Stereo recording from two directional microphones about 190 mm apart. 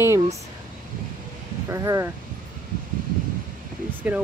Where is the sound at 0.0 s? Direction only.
15° right (ahead or behind).